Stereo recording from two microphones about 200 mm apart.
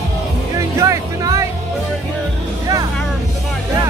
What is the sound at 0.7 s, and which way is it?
Music, 15° right (ahead or behind).